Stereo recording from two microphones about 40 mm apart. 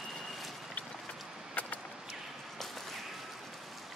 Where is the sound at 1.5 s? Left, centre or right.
Left.